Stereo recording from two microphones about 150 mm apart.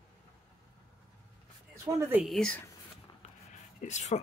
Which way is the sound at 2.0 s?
15° right (ahead or behind).